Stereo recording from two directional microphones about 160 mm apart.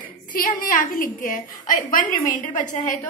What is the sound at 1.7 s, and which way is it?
A woman's voice, 60° left (ahead or behind).